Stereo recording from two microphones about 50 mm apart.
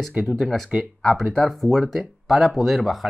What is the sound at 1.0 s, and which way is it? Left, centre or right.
Speech, centre.